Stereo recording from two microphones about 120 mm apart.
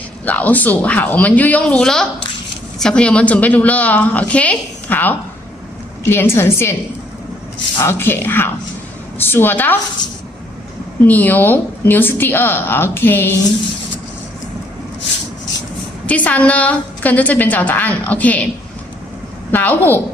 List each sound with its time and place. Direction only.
0.2 s a woman's voice: 15° left (ahead or behind)
11.1 s a woman's voice: 15° left (ahead or behind)
16.1 s a woman's voice: 10° left (ahead or behind)
19.5 s a woman's voice: 15° left (ahead or behind)